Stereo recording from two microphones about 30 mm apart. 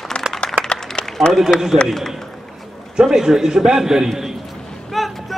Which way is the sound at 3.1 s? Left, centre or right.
Centre.